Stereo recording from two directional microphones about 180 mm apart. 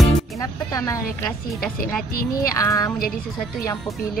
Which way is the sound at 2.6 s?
15° left (ahead or behind).